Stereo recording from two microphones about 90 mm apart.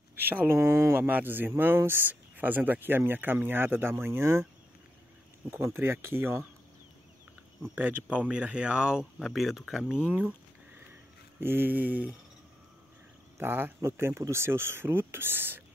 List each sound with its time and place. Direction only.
0.2 s speech: 25° right (ahead or behind)
5.5 s speech: 30° right (ahead or behind)
7.7 s speech: 15° right (ahead or behind)
11.3 s speech: 25° right (ahead or behind)
13.4 s speech: 25° right (ahead or behind)